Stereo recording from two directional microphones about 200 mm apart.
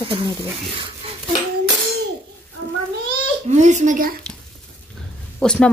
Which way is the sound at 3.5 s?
35° right (ahead or behind).